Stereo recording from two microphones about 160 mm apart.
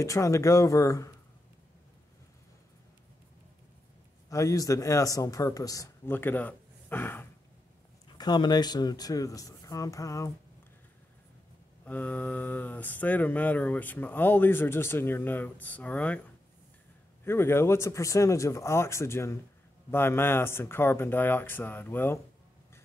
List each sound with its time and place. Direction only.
0.0 s speech: 20° left (ahead or behind)
4.3 s speech: 20° left (ahead or behind)
8.2 s speech: 25° left (ahead or behind)
11.8 s speech: 10° left (ahead or behind)
17.2 s speech: 15° left (ahead or behind)